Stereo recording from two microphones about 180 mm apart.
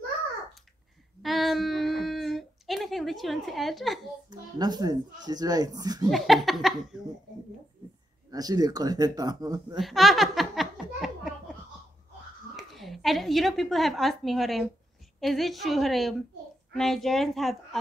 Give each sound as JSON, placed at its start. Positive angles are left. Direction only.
{"t": 1.2, "sound": "a sound", "side_deg": 0}
{"t": 4.3, "sound": "speech", "side_deg": -20}
{"t": 6.0, "sound": "a woman's voice", "side_deg": 0}
{"t": 8.3, "sound": "speech", "side_deg": -20}
{"t": 9.8, "sound": "a sound", "side_deg": 0}
{"t": 12.5, "sound": "a woman's voice", "side_deg": 0}